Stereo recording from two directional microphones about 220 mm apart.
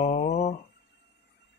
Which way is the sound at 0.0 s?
30° left (ahead or behind).